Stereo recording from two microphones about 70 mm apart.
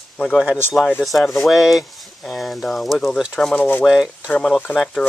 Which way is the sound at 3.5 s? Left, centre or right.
Left.